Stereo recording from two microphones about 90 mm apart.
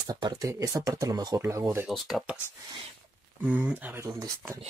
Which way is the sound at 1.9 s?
Centre (ahead or behind).